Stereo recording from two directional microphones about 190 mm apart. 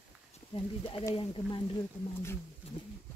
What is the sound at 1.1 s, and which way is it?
Speech, 30° left (ahead or behind).